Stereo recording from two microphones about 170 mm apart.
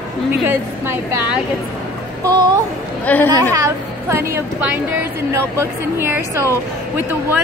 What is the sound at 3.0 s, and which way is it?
Speech, 10° left (ahead or behind).